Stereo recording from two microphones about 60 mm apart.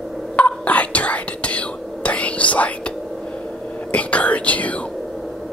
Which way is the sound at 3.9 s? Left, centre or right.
Left.